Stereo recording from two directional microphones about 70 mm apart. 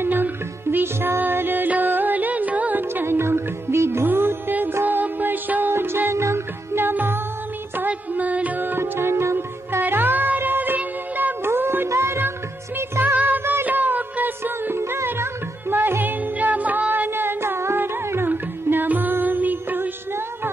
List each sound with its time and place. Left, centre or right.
0.0 s music: right
2.9 s music: right